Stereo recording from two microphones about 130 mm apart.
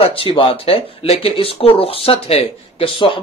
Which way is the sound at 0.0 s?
45° left (ahead or behind).